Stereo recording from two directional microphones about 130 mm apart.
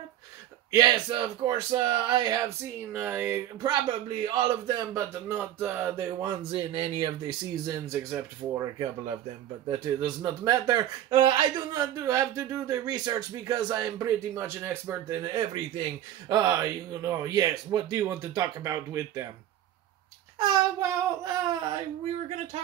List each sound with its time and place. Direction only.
0.7 s speech: 30° right (ahead or behind)
2.9 s speech: 15° right (ahead or behind)
3.6 s speech: 35° right (ahead or behind)
4.9 s speech: 15° right (ahead or behind)
6.0 s a man's voice: 25° right (ahead or behind)
6.5 s a man's voice: 45° right (ahead or behind); by 8.6 s 25° right (ahead or behind)
10.0 s a man's voice: 30° right (ahead or behind)
20.3 s child singing: 35° right (ahead or behind)
20.8 s a man's voice: 25° right (ahead or behind)